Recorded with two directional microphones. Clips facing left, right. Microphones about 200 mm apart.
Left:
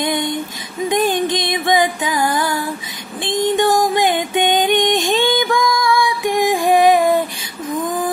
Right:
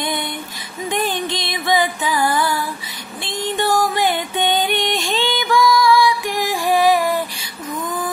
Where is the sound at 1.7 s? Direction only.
15° left (ahead or behind).